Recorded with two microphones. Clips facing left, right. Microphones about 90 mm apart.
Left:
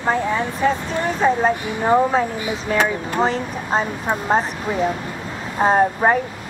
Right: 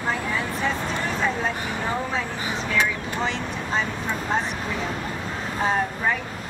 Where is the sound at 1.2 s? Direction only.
40° left (ahead or behind).